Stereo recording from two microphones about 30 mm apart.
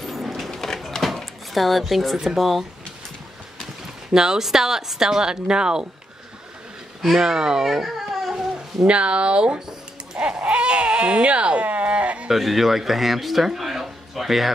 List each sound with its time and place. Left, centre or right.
0.0 s a sound: centre
0.5 s a sound: centre
1.0 s drawer open or close: centre
2.2 s speech: centre
4.1 s speech: centre
7.2 s speech: right
7.6 s baby cry: centre
8.8 s speech: right
10.1 s speech: right
12.3 s speech: centre